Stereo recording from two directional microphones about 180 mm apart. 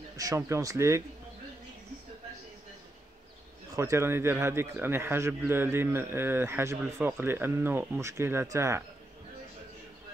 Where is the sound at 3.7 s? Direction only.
15° right (ahead or behind).